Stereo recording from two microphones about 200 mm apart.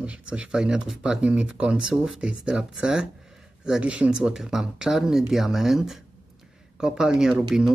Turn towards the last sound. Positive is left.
turn(degrees=-5)  # may be behind; listen again after turning